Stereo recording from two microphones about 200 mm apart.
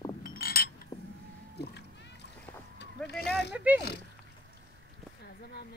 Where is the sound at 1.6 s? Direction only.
55° left (ahead or behind).